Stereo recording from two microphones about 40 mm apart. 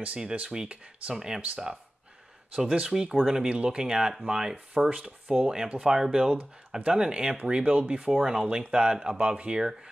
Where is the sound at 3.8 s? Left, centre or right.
Centre.